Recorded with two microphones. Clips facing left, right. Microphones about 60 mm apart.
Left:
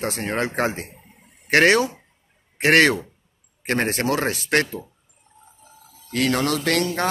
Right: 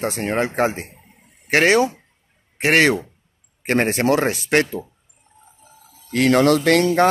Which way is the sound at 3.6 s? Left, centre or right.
Right.